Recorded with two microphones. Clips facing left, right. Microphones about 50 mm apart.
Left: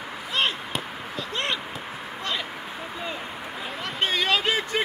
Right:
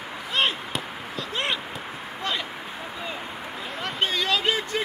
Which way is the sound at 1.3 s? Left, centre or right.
Centre.